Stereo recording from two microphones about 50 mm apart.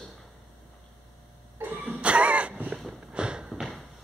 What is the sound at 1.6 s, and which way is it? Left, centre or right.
Cough, right.